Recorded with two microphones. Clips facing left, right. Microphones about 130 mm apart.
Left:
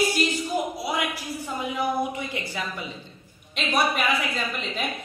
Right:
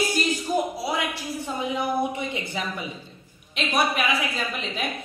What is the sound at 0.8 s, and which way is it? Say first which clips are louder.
A man's voice: right 1 dB; 30° right (ahead or behind).